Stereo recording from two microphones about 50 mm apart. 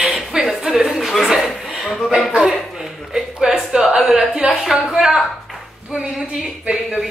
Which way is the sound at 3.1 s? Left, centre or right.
Centre.